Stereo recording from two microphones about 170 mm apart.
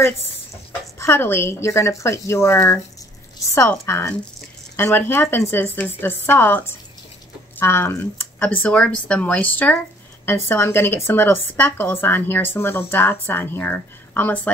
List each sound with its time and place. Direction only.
0.9 s speech: 15° left (ahead or behind)